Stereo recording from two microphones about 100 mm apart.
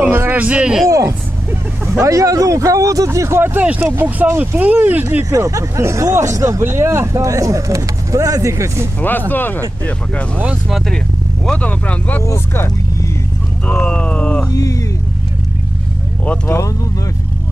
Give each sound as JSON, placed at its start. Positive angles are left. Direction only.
{"t": 0.0, "sound": "a sound", "side_deg": -20}
{"t": 0.8, "sound": "vehicle", "side_deg": -35}
{"t": 2.0, "sound": "speech", "side_deg": -35}
{"t": 5.3, "sound": "speech", "side_deg": -35}
{"t": 9.3, "sound": "speech", "side_deg": 20}
{"t": 10.4, "sound": "speech", "side_deg": -10}
{"t": 11.4, "sound": "speech", "side_deg": 15}
{"t": 12.3, "sound": "speech", "side_deg": 30}
{"t": 13.7, "sound": "speech", "side_deg": 10}
{"t": 14.5, "sound": "speech", "side_deg": 35}
{"t": 16.4, "sound": "speech", "side_deg": 25}